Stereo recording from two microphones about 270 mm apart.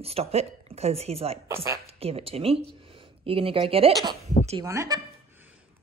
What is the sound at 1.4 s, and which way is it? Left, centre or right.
Speech, centre.